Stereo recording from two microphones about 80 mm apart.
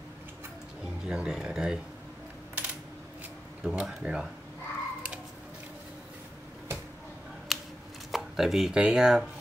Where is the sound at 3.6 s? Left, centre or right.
Centre.